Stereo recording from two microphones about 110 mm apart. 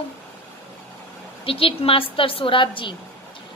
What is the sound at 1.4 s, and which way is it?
A woman's voice, 55° left (ahead or behind).